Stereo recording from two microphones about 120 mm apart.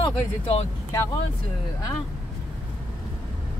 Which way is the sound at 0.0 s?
60° left (ahead or behind).